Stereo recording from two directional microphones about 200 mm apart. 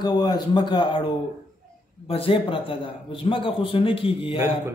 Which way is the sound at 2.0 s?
30° left (ahead or behind).